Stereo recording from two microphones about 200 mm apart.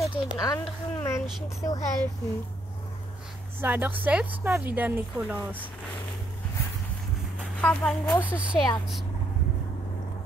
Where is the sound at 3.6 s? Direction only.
10° right (ahead or behind).